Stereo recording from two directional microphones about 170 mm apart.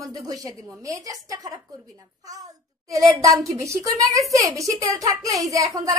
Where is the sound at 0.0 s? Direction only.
20° right (ahead or behind).